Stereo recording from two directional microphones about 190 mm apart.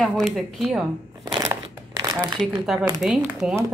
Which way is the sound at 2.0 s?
20° right (ahead or behind).